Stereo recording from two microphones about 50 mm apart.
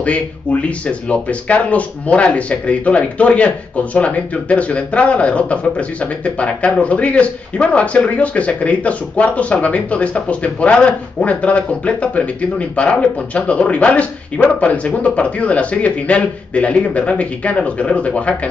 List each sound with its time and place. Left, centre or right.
0.0 s speech: left